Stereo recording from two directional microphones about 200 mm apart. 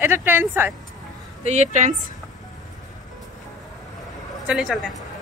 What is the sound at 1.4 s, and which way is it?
Speech, 35° right (ahead or behind).